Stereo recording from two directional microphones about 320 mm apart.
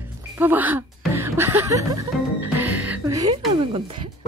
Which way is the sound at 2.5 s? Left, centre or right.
Centre.